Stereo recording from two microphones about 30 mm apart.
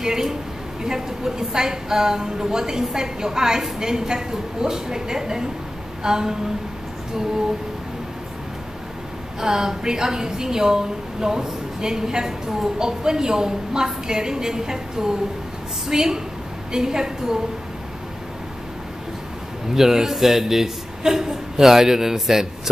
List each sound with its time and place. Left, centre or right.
0.0 s a woman's voice: centre
9.4 s a woman's voice: centre
19.7 s a man's voice: centre